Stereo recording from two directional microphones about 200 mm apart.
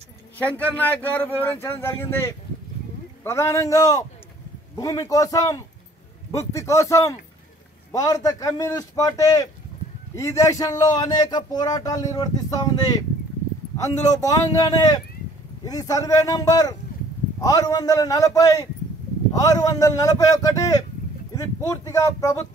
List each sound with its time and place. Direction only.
0.4 s speech: 10° left (ahead or behind)
14.0 s speech: 15° left (ahead or behind)